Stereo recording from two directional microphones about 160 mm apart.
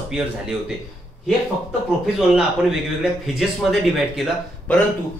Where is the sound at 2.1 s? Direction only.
5° right (ahead or behind).